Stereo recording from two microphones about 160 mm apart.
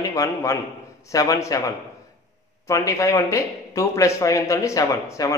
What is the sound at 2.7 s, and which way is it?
A man's voice, 20° left (ahead or behind).